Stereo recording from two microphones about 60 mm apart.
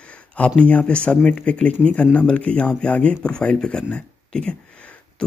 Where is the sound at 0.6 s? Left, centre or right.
Left.